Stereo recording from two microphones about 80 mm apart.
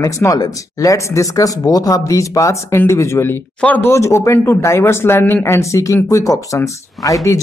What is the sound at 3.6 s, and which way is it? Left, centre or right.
Speech, centre.